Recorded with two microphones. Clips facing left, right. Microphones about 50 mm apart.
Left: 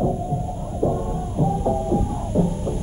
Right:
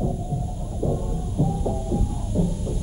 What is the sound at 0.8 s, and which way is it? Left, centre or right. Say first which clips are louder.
Heart murmur: left 4 dB; left.